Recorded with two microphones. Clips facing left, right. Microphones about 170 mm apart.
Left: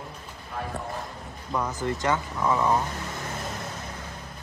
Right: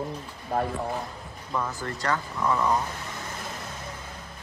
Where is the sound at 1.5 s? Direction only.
20° left (ahead or behind).